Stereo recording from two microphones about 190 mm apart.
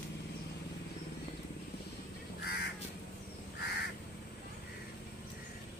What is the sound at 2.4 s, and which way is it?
Crow, 60° left (ahead or behind).